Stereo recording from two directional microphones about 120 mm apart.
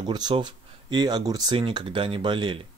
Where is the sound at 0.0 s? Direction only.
40° right (ahead or behind).